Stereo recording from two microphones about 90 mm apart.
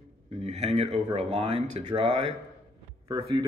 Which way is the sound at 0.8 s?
90° right.